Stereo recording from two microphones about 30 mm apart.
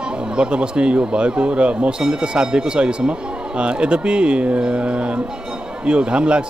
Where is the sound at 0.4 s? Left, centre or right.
Right.